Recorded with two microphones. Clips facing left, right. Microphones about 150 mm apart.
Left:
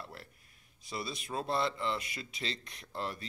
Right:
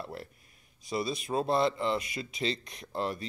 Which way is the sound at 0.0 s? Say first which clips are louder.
Right 7 dB; 20° right (ahead or behind).